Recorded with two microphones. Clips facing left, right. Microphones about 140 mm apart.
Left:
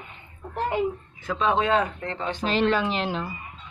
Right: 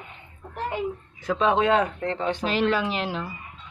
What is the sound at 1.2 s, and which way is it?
Speech, 70° right (ahead or behind).